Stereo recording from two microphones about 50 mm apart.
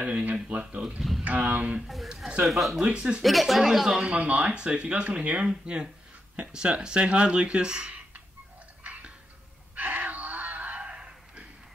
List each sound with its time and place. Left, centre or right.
0.0 s speech: right
1.2 s a sound: right
2.4 s speech: centre
2.8 s speech: right
3.2 s speech: centre
4.0 s speech: right
8.8 s a sound: right